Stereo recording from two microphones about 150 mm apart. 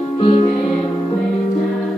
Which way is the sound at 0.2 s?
35° left (ahead or behind).